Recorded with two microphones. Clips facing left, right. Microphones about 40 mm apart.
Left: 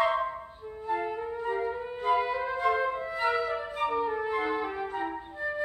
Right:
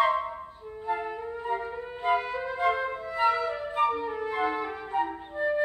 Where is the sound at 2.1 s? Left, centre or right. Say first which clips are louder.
Even; right.